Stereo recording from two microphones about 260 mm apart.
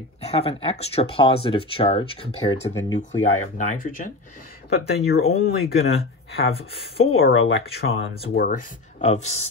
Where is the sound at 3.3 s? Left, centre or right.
Left.